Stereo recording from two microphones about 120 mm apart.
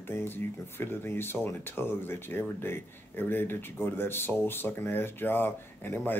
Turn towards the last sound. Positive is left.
turn(degrees=15)  # may be behind; listen again after turning